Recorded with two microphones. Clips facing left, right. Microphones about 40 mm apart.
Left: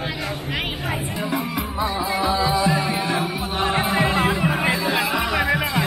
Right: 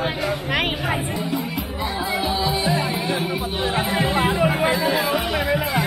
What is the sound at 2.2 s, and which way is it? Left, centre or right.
Music, left.